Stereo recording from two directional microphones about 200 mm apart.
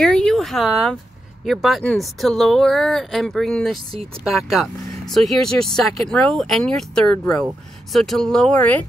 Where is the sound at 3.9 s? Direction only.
30° right (ahead or behind).